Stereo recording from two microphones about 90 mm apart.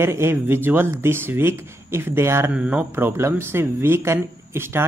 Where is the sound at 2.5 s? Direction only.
15° right (ahead or behind).